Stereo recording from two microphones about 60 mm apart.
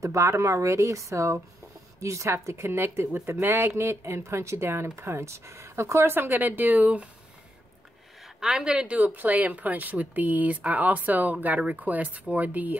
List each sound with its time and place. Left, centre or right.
0.0 s speech: right
8.4 s speech: centre; by 12.7 s right